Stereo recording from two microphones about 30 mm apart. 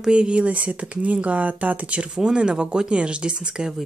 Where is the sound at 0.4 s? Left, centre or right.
Right.